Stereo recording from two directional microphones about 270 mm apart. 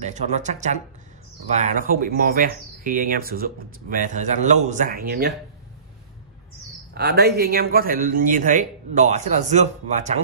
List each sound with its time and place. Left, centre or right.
0.0 s speech: right
6.9 s speech: right